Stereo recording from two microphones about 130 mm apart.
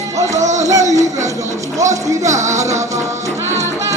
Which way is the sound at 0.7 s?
25° right (ahead or behind).